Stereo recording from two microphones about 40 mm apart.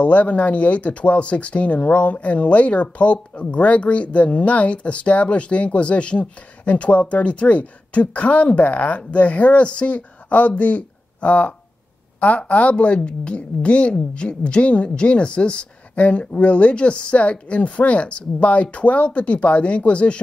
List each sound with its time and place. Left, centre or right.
0.0 s speech: left